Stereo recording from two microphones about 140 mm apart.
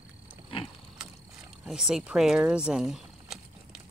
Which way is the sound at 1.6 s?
5° right (ahead or behind).